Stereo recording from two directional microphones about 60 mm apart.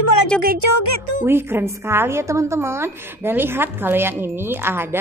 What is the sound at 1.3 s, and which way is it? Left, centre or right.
Speech, right.